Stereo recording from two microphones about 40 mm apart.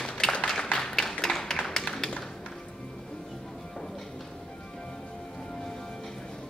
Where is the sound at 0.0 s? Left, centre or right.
Centre.